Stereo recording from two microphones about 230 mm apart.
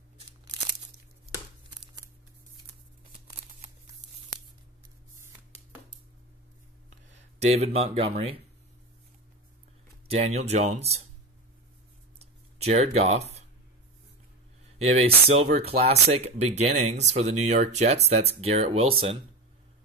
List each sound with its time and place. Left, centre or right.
7.3 s speech: right
10.0 s speech: right
12.2 s a sound: right
14.8 s speech: right